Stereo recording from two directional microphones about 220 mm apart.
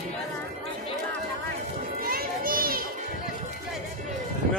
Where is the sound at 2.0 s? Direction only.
40° right (ahead or behind).